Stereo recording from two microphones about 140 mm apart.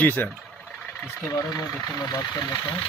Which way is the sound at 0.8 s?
5° left (ahead or behind).